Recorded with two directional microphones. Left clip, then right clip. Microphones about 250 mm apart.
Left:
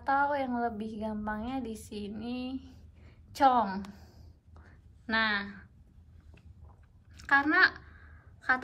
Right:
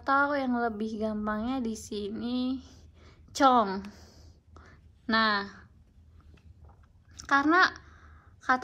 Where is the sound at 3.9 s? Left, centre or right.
Right.